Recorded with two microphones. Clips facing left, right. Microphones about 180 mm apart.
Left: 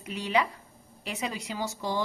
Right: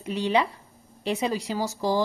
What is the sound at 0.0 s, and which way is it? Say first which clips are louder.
A woman's voice: right 4 dB; 30° right (ahead or behind).